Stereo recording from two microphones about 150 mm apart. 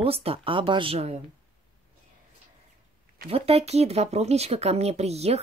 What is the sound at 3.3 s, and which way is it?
Speech, 40° right (ahead or behind).